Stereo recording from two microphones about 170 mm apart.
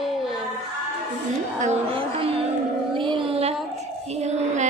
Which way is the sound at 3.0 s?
30° right (ahead or behind).